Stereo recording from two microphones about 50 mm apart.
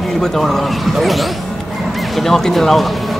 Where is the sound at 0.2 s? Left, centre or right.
Centre.